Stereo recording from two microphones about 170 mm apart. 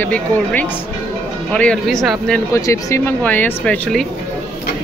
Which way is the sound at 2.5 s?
15° left (ahead or behind).